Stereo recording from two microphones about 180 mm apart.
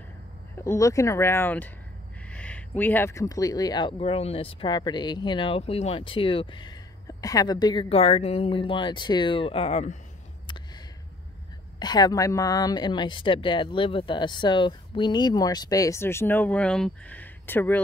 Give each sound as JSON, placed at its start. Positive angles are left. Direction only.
{"t": 0.7, "sound": "speech", "side_deg": 15}
{"t": 10.4, "sound": "a sound", "side_deg": 25}
{"t": 11.8, "sound": "speech", "side_deg": 20}